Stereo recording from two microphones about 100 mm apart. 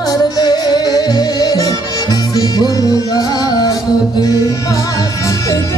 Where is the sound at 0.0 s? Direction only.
40° left (ahead or behind).